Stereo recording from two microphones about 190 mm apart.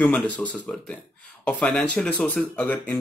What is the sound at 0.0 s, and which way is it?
Speech, 5° left (ahead or behind).